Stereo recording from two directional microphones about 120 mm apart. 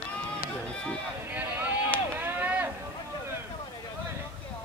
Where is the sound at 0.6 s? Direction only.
5° left (ahead or behind).